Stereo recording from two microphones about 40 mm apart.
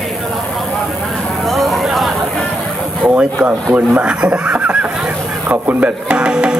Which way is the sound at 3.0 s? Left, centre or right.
Right.